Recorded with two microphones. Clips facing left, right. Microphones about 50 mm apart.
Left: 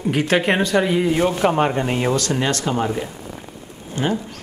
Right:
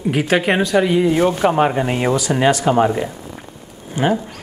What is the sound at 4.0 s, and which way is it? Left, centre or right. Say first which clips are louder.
Speech: right 4 dB; centre.